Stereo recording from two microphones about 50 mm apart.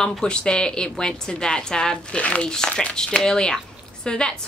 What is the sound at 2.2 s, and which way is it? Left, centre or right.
Speech, left.